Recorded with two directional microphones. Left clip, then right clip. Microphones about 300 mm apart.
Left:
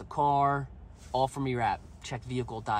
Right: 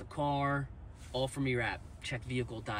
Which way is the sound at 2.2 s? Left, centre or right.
Centre.